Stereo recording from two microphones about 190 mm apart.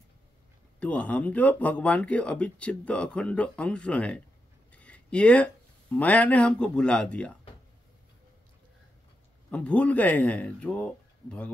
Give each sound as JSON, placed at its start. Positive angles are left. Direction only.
{"t": 0.7, "sound": "speech", "side_deg": 5}
{"t": 9.5, "sound": "speech", "side_deg": 5}